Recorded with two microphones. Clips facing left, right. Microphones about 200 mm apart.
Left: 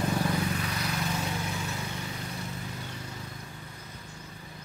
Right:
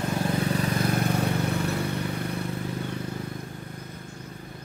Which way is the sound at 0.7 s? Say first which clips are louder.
Right 8 dB; 50° right (ahead or behind).